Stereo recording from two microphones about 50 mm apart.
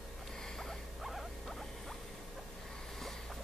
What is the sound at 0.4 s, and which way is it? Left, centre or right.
Rodents, centre.